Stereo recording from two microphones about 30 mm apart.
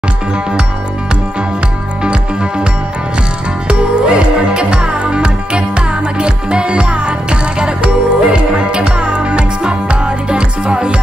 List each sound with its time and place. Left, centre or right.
3.6 s music: right